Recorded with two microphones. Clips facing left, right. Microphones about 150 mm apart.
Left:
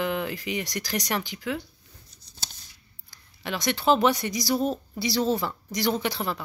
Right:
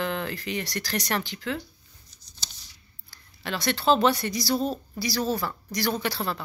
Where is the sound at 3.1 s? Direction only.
15° left (ahead or behind).